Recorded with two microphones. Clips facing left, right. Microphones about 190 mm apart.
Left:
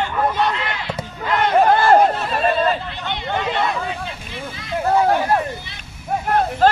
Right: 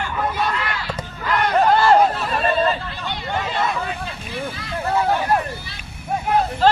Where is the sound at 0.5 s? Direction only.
20° left (ahead or behind).